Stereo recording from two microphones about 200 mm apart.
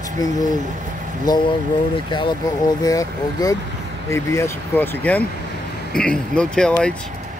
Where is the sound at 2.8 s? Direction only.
15° left (ahead or behind).